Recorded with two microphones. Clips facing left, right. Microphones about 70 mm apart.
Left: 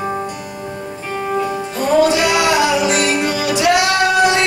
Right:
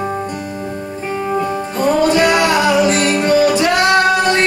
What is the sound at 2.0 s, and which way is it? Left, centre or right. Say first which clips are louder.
Music: right 2 dB; right.